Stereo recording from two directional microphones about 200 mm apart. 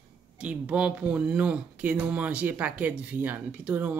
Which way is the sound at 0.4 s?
5° right (ahead or behind).